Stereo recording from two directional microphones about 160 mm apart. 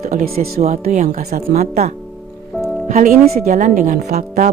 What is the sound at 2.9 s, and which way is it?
Speech, 55° right (ahead or behind).